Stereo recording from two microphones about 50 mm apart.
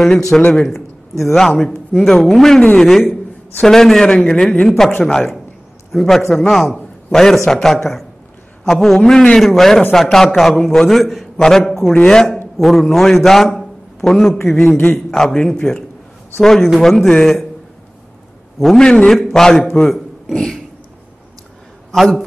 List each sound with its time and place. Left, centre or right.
0.3 s speech: centre
2.6 s a man's voice: centre
3.6 s speech: centre
4.6 s a man's voice: centre
9.4 s a man's voice: centre
18.8 s speech: centre
21.9 s a man's voice: centre